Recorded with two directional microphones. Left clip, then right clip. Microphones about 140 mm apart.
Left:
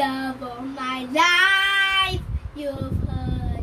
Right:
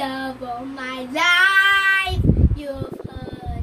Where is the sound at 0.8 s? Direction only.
15° right (ahead or behind).